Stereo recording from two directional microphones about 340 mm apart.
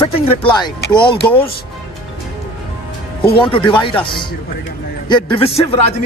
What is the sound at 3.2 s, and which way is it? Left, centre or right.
A man's voice, centre.